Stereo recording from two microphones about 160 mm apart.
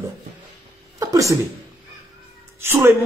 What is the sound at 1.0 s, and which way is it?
Speech, 20° right (ahead or behind).